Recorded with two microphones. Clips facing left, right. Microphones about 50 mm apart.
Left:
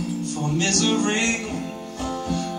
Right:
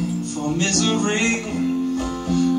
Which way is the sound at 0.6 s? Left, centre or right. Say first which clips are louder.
Even; centre.